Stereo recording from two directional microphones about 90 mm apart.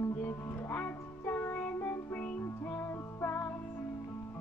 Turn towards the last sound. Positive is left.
turn(degrees=25)  # may be behind; listen again after turning